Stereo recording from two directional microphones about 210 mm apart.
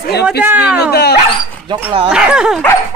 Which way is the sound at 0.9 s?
50° left (ahead or behind).